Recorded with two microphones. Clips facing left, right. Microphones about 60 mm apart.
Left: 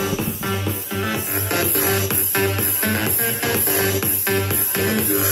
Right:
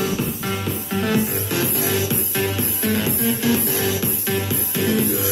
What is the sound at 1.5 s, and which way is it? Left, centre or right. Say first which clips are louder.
Music: left 3 dB; left.